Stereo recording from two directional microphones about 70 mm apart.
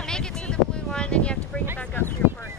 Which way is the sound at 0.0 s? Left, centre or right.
Centre.